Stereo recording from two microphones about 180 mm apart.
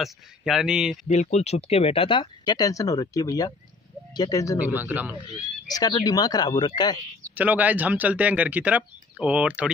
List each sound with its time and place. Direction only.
0.0 s speech: centre (ahead or behind)
1.0 s speech: 40° left (ahead or behind); by 4.6 s 20° left (ahead or behind)
4.6 s speech: 10° right (ahead or behind)
5.2 s speech: 20° left (ahead or behind)
7.3 s speech: 10° right (ahead or behind)